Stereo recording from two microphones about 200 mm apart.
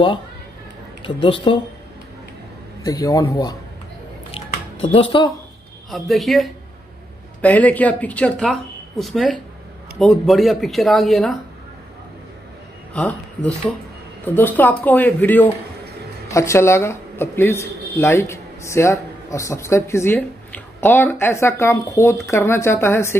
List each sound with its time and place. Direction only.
1.0 s speech: 25° left (ahead or behind)
2.8 s speech: 20° left (ahead or behind)
4.9 s speech: 25° left (ahead or behind)
5.9 s speech: centre (ahead or behind)
12.9 s speech: 5° left (ahead or behind)